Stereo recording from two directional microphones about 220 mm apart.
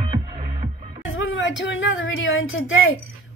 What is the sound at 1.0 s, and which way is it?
Speech, 65° left (ahead or behind).